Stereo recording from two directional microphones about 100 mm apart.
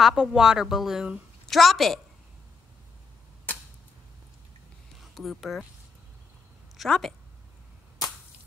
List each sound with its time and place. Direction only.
0.0 s speech: 5° right (ahead or behind)
3.5 s a sound: 20° left (ahead or behind)
5.1 s speech: centre (ahead or behind)
6.8 s speech: 5° left (ahead or behind)